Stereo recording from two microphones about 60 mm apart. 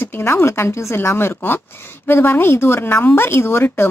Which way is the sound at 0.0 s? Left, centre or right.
Left.